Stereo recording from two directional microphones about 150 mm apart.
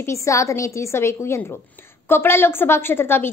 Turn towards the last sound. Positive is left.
turn(degrees=15)  # may be behind; listen again after turning